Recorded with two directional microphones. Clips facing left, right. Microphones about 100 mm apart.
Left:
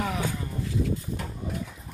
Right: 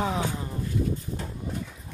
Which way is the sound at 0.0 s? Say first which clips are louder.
Right 2 dB; 25° right (ahead or behind).